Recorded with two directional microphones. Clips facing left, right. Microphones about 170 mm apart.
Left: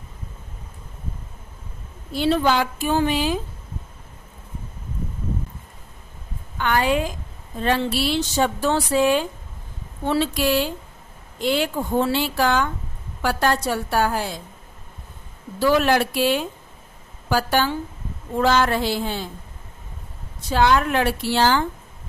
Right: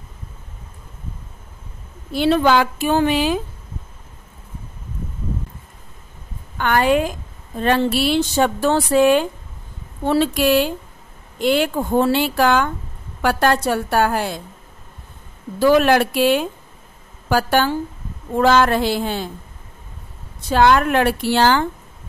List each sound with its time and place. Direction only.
2.1 s speech: 70° right (ahead or behind)
6.6 s a woman's voice: 55° right (ahead or behind)
15.6 s a woman's voice: 55° right (ahead or behind)
20.4 s a woman's voice: 60° right (ahead or behind)